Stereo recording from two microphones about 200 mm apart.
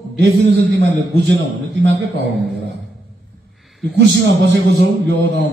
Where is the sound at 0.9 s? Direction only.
60° right (ahead or behind).